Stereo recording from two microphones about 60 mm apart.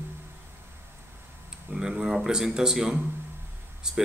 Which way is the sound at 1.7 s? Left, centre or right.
Centre.